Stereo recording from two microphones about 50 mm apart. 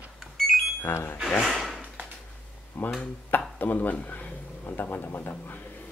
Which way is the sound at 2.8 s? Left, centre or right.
Left.